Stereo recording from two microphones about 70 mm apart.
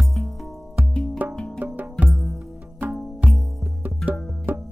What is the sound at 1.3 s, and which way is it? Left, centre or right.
Music, centre.